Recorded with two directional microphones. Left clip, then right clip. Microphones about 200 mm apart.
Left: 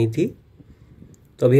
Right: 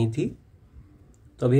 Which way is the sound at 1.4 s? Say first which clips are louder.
Left 7 dB; 15° left (ahead or behind).